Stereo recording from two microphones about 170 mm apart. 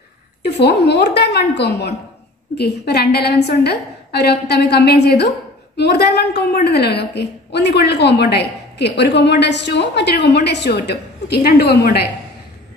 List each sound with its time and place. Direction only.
0.5 s a woman's voice: 80° left